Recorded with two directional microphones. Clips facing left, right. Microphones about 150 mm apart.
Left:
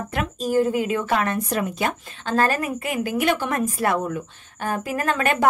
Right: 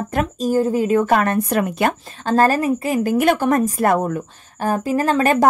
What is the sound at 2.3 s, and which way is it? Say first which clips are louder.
A woman's voice: right 6 dB; 35° right (ahead or behind).